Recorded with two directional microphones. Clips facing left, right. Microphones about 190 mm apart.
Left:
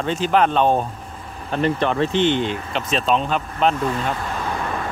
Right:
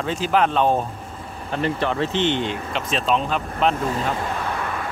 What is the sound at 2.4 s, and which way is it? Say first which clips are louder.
Speech: left 2 dB; centre (ahead or behind).